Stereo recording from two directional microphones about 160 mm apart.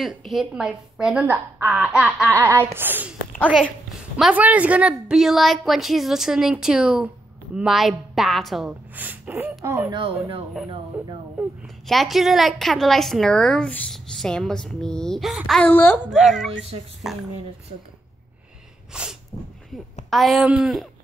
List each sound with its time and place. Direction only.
0.0 s a woman's voice: centre (ahead or behind)
4.2 s a woman's voice: 10° right (ahead or behind)
10.9 s a woman's voice: 10° right (ahead or behind); by 16.0 s 10° left (ahead or behind)
16.1 s a woman's voice: centre (ahead or behind)
18.9 s a woman's voice: 5° right (ahead or behind)
19.3 s speech: 45° left (ahead or behind)
20.1 s a woman's voice: centre (ahead or behind)